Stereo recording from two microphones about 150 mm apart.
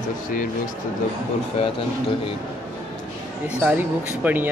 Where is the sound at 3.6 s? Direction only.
10° right (ahead or behind).